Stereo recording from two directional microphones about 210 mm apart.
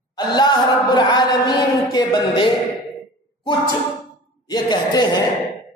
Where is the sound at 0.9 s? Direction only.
20° left (ahead or behind).